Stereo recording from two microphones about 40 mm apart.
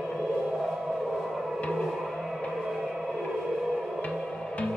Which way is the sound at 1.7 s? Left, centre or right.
Centre.